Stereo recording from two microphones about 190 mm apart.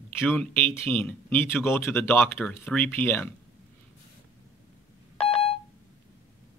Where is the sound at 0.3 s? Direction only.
10° left (ahead or behind).